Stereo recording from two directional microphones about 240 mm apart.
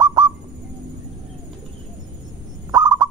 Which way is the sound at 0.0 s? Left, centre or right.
Centre.